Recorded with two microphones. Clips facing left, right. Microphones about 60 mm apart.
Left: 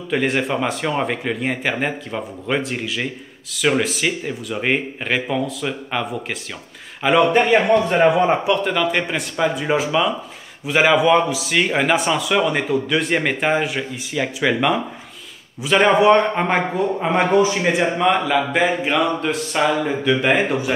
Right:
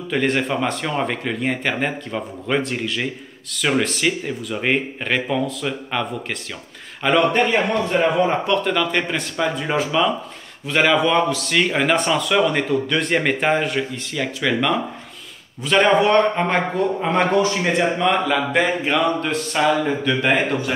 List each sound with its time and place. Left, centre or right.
0.1 s speech: centre
7.5 s speech: left
8.3 s a man's voice: centre